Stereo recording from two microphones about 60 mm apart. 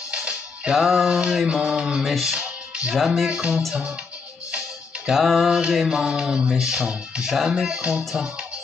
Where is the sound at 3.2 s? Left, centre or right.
Centre.